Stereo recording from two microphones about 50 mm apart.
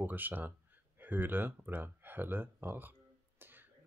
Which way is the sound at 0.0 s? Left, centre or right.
Right.